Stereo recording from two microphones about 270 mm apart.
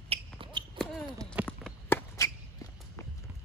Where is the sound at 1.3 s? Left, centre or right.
Centre.